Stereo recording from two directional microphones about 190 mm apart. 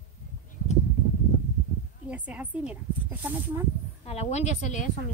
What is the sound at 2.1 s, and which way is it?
Speech, 5° right (ahead or behind).